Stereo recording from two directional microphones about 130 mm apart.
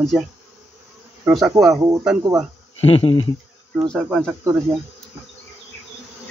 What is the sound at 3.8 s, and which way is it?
Speech, centre (ahead or behind).